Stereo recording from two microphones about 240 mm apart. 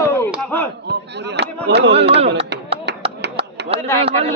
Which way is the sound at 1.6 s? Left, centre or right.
Right.